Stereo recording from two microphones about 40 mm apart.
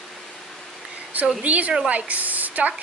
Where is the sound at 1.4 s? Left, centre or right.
Right.